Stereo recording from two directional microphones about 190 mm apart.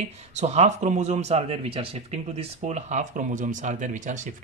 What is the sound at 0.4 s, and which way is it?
Speech, 35° right (ahead or behind).